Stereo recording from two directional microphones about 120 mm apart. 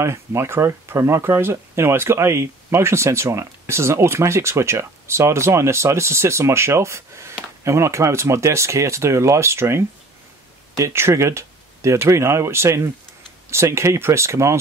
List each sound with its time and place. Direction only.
0.0 s speech: 20° right (ahead or behind)